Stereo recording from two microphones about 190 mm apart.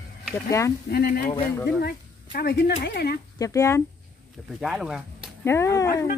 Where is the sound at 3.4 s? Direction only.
15° left (ahead or behind).